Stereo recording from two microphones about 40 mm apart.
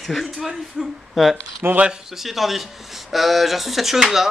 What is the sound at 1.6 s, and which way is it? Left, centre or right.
Speech, right.